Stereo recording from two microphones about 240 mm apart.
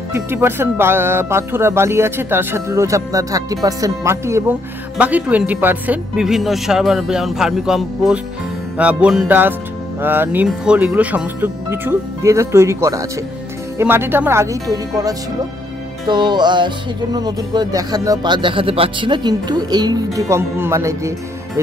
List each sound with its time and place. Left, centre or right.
0.1 s speech: centre